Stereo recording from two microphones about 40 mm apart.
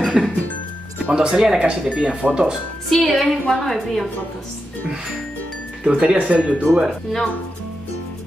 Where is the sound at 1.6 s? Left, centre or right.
Right.